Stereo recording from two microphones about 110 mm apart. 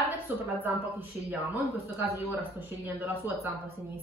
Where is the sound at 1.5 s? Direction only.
15° right (ahead or behind).